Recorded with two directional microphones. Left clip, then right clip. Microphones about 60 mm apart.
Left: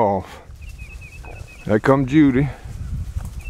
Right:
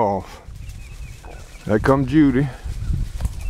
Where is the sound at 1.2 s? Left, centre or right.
Centre.